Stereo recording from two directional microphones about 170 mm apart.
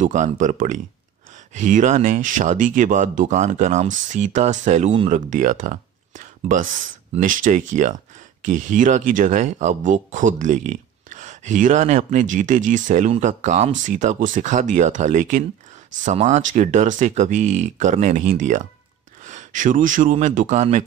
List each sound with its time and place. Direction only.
0.0 s speech: 45° right (ahead or behind)